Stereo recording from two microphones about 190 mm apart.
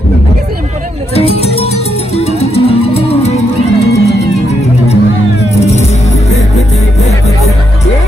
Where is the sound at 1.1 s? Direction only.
30° left (ahead or behind).